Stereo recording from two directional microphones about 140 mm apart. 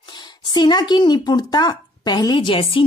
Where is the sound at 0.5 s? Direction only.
30° left (ahead or behind).